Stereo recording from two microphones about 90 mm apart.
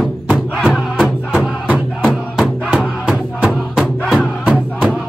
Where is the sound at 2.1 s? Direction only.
Centre (ahead or behind).